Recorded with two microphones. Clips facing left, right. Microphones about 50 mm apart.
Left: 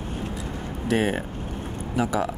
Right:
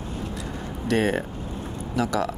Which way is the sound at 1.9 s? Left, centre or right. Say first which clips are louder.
Even; centre.